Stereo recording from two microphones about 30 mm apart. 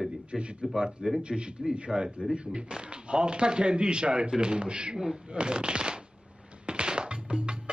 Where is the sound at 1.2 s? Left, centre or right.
Right.